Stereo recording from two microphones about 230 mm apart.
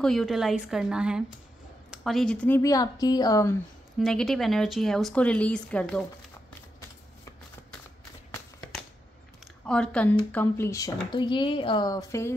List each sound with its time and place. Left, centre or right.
0.0 s speech: centre
4.0 s speech: centre
9.7 s speech: centre